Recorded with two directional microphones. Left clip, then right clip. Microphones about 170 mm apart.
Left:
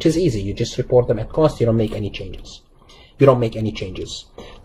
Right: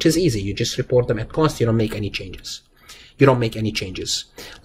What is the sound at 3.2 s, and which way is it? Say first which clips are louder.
Speech: left 2 dB; 10° right (ahead or behind).